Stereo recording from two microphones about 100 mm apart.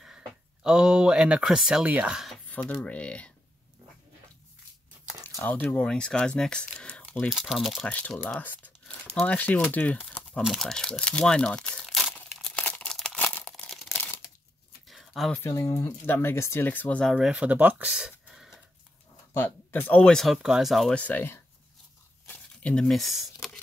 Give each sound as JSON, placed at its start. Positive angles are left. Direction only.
{"t": 0.7, "sound": "speech", "side_deg": -10}
{"t": 2.5, "sound": "speech", "side_deg": 15}
{"t": 5.2, "sound": "speech", "side_deg": 20}
{"t": 7.2, "sound": "speech", "side_deg": -5}
{"t": 7.8, "sound": "speech", "side_deg": 10}
{"t": 12.4, "sound": "tearing", "side_deg": 10}
{"t": 12.9, "sound": "a sound", "side_deg": 10}
{"t": 14.9, "sound": "a sound", "side_deg": 0}
{"t": 15.5, "sound": "speech", "side_deg": 30}
{"t": 17.0, "sound": "speech", "side_deg": 5}
{"t": 17.3, "sound": "speech", "side_deg": -15}
{"t": 19.3, "sound": "speech", "side_deg": 20}
{"t": 20.9, "sound": "speech", "side_deg": 15}
{"t": 22.3, "sound": "a sound", "side_deg": 10}